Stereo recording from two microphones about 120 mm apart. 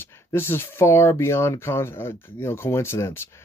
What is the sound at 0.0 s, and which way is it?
Speech, 20° left (ahead or behind).